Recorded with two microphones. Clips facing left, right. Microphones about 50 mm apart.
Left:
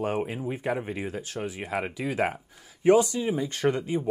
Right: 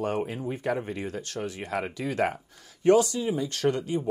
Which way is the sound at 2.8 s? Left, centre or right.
Left.